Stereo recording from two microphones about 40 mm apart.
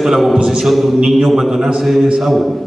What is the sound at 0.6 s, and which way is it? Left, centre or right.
A man's voice, centre.